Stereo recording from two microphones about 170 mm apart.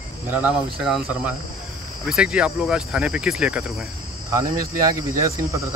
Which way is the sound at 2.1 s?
5° right (ahead or behind).